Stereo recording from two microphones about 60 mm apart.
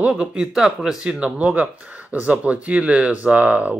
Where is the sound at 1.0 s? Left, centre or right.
Right.